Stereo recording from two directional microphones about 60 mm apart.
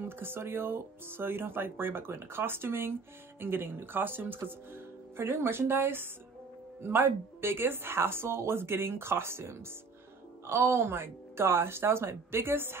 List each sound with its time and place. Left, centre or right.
0.0 s speech: right